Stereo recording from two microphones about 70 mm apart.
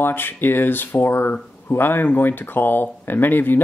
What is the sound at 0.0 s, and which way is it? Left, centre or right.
Speech, left.